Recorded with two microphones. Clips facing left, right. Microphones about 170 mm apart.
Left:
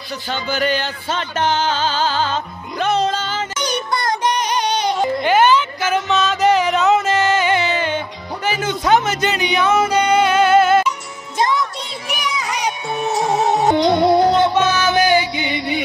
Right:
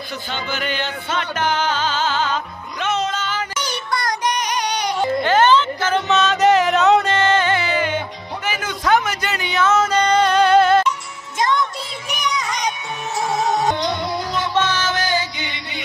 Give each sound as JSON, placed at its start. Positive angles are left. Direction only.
{"t": 0.3, "sound": "music", "side_deg": 40}
{"t": 5.0, "sound": "a sound", "side_deg": 15}
{"t": 6.0, "sound": "music", "side_deg": 0}
{"t": 7.5, "sound": "music", "side_deg": 25}
{"t": 12.1, "sound": "a sound", "side_deg": 5}
{"t": 13.0, "sound": "music", "side_deg": 35}
{"t": 13.7, "sound": "music", "side_deg": 55}
{"t": 14.5, "sound": "music", "side_deg": 10}
{"t": 15.4, "sound": "music", "side_deg": 55}